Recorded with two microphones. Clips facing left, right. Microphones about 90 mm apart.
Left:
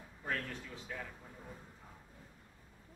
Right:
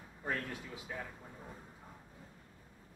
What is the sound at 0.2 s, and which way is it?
A man's voice, 10° right (ahead or behind).